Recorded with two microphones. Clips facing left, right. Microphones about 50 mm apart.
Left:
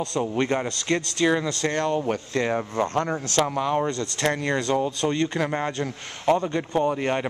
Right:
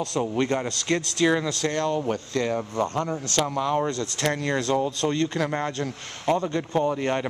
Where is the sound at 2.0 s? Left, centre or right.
Left.